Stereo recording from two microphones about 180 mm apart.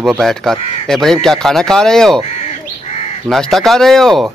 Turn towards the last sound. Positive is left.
turn(degrees=0)  # may be behind; listen again after turning